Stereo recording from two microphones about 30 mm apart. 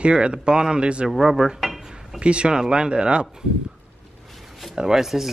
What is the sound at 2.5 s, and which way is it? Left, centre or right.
Speech, right.